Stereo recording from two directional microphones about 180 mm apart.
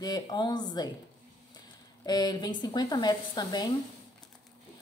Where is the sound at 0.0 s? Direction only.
20° left (ahead or behind).